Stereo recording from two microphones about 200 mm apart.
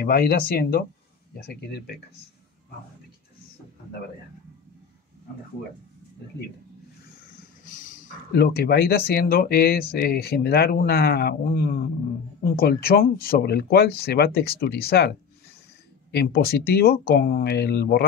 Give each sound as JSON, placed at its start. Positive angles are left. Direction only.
{"t": 0.0, "sound": "speech", "side_deg": 50}
{"t": 7.6, "sound": "speech", "side_deg": 40}